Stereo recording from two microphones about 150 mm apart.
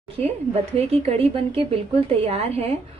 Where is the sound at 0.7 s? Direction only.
40° right (ahead or behind).